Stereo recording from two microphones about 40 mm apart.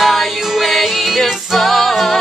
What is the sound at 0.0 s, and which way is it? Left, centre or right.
Music, centre.